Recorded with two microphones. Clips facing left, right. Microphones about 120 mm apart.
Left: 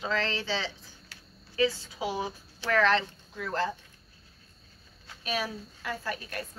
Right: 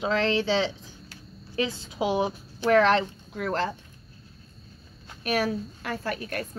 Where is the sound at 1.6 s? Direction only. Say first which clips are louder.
Left 1 dB; 20° right (ahead or behind).